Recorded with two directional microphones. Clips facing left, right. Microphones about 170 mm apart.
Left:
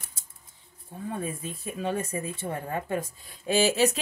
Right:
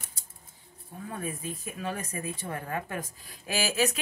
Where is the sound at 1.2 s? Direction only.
30° left (ahead or behind).